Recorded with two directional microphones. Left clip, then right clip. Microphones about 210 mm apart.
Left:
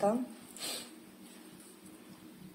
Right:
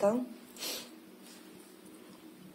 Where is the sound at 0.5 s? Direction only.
25° right (ahead or behind).